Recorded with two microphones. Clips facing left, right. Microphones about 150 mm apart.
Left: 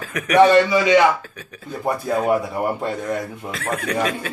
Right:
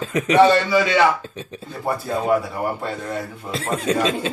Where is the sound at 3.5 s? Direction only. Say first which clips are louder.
Right 4 dB; 25° right (ahead or behind).